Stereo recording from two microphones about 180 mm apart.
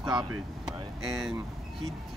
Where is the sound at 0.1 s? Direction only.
Centre (ahead or behind).